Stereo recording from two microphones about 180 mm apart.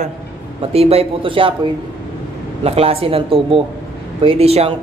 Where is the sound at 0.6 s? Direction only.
35° right (ahead or behind).